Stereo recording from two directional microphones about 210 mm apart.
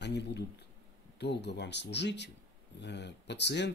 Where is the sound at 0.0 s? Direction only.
55° left (ahead or behind).